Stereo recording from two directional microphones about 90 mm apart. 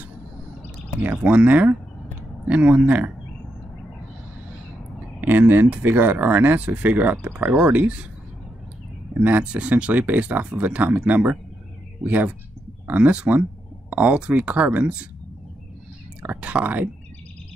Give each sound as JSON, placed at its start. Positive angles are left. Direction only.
{"t": 1.0, "sound": "speech", "side_deg": -15}
{"t": 5.2, "sound": "speech", "side_deg": -20}
{"t": 9.2, "sound": "speech", "side_deg": -15}
{"t": 16.2, "sound": "speech", "side_deg": -15}